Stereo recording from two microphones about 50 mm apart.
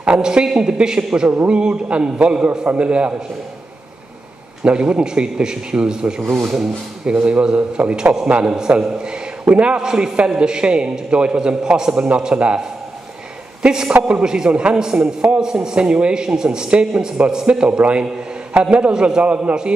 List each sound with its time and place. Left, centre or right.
0.0 s a woman's voice: right
4.6 s a man's voice: right